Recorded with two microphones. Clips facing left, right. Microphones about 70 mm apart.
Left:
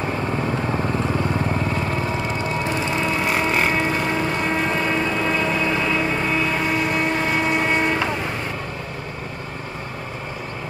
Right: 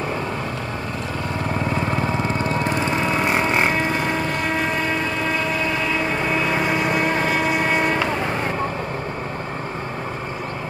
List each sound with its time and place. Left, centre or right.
3.3 s vehicle: right
6.5 s vehicle: centre